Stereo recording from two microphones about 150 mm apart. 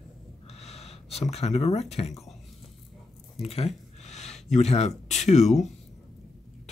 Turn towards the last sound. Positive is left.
turn(degrees=50)  # may be behind; listen again after turning